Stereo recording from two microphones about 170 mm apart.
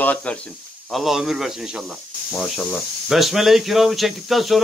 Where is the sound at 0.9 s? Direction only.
Centre (ahead or behind).